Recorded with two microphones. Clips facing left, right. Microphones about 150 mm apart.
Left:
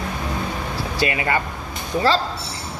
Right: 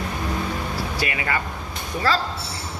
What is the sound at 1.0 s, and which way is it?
Speech, 25° left (ahead or behind).